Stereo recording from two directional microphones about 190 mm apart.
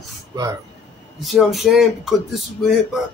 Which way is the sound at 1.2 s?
Centre (ahead or behind).